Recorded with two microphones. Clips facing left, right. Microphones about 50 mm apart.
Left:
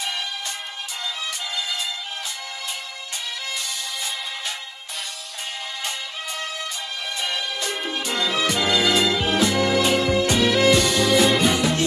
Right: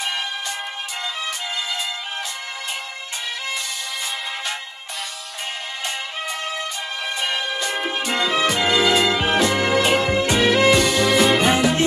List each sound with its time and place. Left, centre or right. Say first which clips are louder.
7.2 s music: right 3 dB; right
11.1 s music: even; centre
11.3 s music: right 3 dB; right